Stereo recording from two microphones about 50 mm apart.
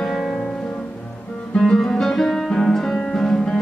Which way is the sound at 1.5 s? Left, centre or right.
Centre.